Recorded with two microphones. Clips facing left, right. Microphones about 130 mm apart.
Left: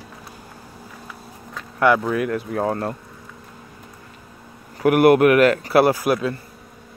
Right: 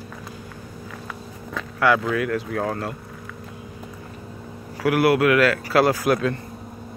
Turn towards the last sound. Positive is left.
turn(degrees=15)  # may be behind; listen again after turning